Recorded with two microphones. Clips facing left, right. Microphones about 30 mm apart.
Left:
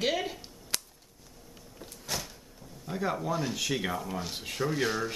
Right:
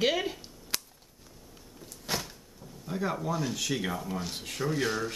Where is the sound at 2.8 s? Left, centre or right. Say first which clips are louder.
Even; centre.